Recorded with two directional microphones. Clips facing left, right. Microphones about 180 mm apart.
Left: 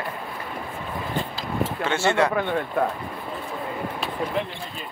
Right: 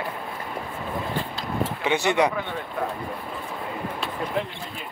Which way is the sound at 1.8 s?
15° right (ahead or behind).